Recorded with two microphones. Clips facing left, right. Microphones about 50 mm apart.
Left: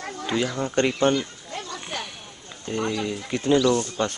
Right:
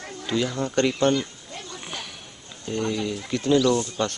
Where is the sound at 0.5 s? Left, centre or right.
Centre.